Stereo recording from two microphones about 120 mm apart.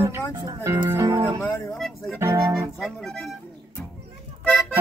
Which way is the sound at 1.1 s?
40° right (ahead or behind).